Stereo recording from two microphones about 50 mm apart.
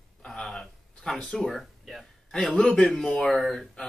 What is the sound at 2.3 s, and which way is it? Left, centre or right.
Speech, centre.